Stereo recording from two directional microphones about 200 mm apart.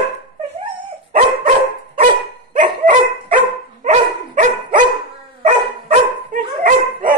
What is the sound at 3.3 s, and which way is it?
Dog, 40° right (ahead or behind).